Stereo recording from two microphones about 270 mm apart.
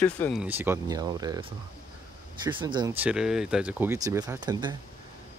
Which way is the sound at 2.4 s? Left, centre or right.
Centre.